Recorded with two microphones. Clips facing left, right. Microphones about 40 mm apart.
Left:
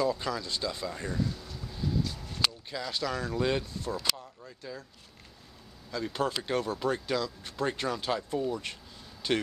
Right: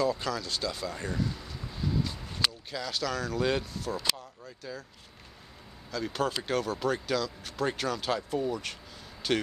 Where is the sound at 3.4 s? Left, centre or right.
Centre.